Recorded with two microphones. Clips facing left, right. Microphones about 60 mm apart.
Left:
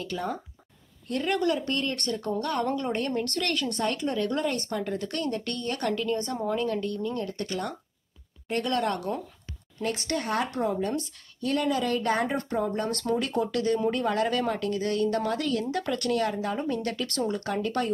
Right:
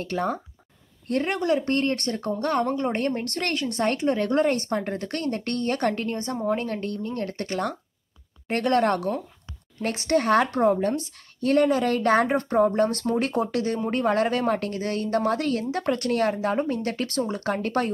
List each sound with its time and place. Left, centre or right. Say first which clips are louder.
0.0 s speech: right 5 dB; right
1.3 s speech: even; right
1.7 s speech: right 5 dB; right
6.2 s a woman's voice: right 3 dB; right
6.5 s speech: right 1 dB; right
10.2 s speech: right 8 dB; right
10.5 s speech: right 6 dB; right